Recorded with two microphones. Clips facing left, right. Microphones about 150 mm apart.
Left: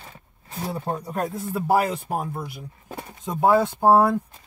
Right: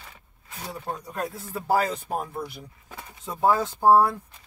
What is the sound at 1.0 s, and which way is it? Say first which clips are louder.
Speech: left 4 dB; 30° left (ahead or behind).